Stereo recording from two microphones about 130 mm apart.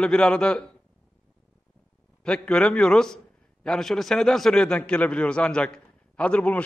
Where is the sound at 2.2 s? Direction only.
10° left (ahead or behind).